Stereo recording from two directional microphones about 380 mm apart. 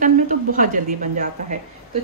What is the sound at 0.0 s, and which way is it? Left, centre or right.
A woman's voice, centre.